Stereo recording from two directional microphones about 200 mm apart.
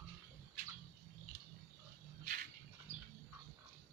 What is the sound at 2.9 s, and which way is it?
Bird, 15° right (ahead or behind).